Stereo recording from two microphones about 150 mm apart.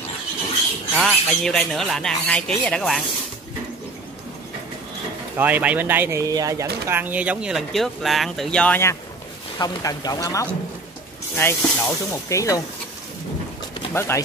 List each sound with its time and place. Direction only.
0.9 s speech: 5° left (ahead or behind)
5.4 s speech: 10° right (ahead or behind); by 8.9 s 10° left (ahead or behind)
9.6 s speech: 25° left (ahead or behind)
13.9 s speech: 20° left (ahead or behind)